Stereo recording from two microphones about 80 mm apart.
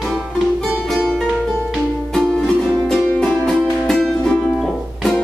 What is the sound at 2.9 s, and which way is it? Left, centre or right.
Music, centre.